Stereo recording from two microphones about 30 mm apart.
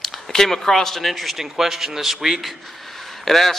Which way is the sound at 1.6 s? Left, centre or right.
Centre.